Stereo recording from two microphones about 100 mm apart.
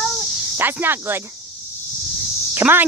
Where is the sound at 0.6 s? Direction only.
20° right (ahead or behind).